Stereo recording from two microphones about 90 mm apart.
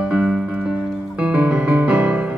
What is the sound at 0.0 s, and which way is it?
Music, 15° right (ahead or behind).